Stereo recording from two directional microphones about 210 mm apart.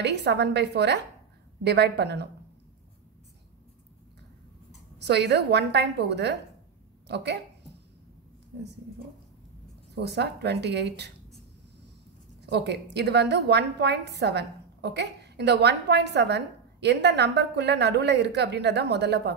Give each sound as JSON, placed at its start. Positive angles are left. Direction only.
{"t": 0.0, "sound": "a woman's voice", "side_deg": -55}
{"t": 5.0, "sound": "a woman's voice", "side_deg": -55}
{"t": 9.9, "sound": "a woman's voice", "side_deg": -50}
{"t": 12.4, "sound": "a woman's voice", "side_deg": -55}